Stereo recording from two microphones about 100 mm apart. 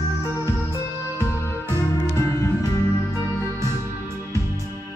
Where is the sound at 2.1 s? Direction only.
30° left (ahead or behind).